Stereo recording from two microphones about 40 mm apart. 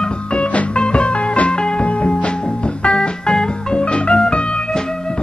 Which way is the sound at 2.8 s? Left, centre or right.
Centre.